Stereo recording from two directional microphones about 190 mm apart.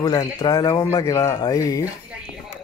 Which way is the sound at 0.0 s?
20° left (ahead or behind).